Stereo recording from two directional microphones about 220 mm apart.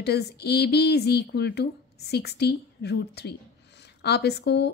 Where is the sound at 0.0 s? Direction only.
50° left (ahead or behind).